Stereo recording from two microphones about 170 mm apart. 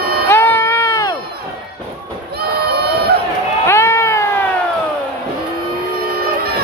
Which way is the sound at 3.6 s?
15° left (ahead or behind).